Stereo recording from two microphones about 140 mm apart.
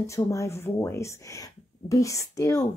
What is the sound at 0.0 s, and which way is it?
Speech, 20° left (ahead or behind).